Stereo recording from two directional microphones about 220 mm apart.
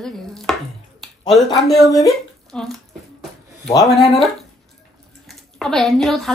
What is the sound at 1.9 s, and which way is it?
Speech, centre (ahead or behind).